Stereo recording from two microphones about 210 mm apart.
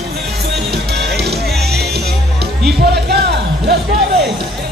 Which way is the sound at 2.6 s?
50° right (ahead or behind).